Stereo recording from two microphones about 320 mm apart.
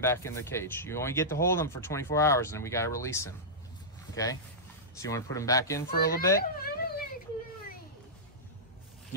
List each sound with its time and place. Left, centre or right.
0.0 s speech: centre
5.9 s speech: left
6.4 s a sound: left